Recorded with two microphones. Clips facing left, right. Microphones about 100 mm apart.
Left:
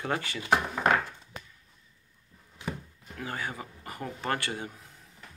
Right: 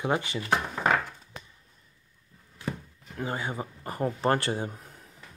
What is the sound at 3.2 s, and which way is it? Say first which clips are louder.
Speech: right 4 dB; 25° right (ahead or behind).